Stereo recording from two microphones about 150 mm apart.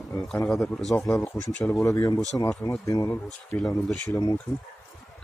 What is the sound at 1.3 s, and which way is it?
Speech, 25° left (ahead or behind).